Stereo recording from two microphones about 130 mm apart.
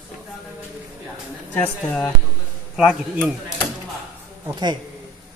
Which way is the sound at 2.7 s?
5° right (ahead or behind).